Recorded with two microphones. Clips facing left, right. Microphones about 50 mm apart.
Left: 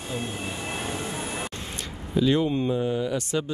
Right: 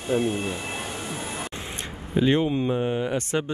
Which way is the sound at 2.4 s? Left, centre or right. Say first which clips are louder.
Right 1 dB; centre.